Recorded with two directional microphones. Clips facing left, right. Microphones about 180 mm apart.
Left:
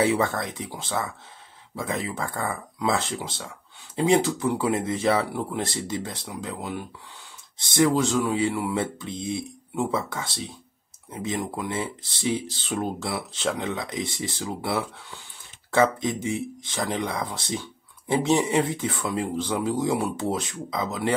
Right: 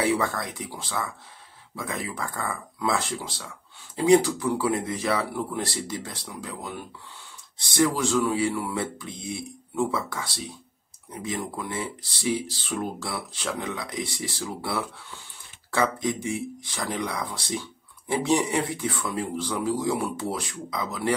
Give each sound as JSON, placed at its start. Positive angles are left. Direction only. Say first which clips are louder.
{"t": 0.0, "sound": "speech", "louder": "left 2 dB", "side_deg": 25}